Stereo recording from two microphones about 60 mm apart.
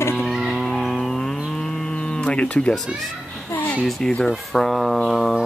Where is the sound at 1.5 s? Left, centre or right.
Centre.